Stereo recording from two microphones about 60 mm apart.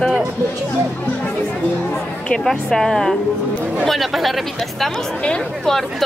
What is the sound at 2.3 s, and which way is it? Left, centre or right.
Speech, centre.